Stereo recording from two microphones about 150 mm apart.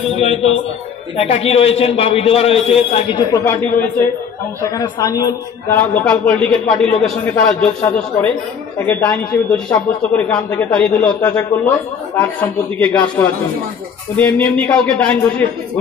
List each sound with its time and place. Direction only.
0.1 s a man's voice: 45° left (ahead or behind)
3.2 s a man's voice: 20° left (ahead or behind)
4.6 s a man's voice: 20° left (ahead or behind)
5.8 s a man's voice: 10° left (ahead or behind)